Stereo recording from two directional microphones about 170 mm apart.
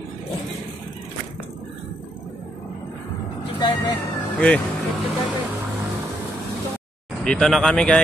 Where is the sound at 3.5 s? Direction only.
25° left (ahead or behind).